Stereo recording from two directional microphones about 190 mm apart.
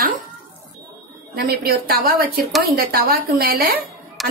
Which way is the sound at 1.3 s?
55° right (ahead or behind).